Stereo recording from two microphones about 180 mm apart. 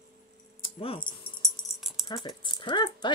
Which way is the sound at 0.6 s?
30° left (ahead or behind).